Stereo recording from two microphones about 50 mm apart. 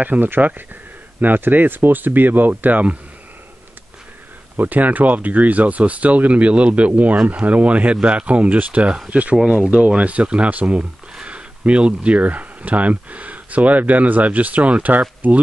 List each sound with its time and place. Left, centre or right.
0.0 s speech: right
4.6 s speech: right